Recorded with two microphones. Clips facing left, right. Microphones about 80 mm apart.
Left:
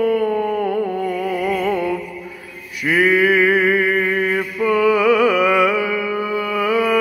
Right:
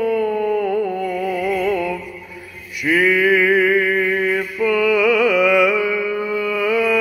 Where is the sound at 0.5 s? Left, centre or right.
Left.